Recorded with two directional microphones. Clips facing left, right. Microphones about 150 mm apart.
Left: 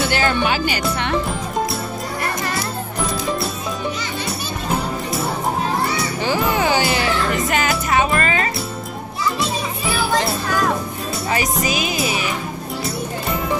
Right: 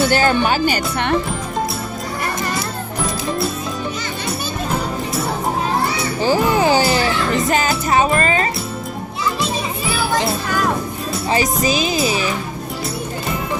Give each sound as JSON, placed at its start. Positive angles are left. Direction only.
{"t": 0.0, "sound": "speech", "side_deg": -45}
{"t": 6.2, "sound": "music", "side_deg": -35}
{"t": 11.2, "sound": "speech", "side_deg": -30}